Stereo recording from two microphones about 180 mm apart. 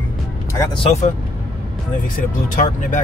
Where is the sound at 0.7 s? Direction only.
35° left (ahead or behind).